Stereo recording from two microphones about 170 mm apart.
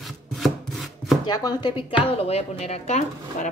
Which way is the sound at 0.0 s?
Centre (ahead or behind).